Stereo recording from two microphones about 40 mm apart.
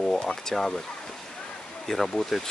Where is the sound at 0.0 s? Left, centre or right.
Centre.